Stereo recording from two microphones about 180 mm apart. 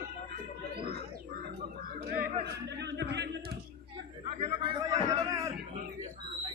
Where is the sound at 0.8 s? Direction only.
60° right (ahead or behind).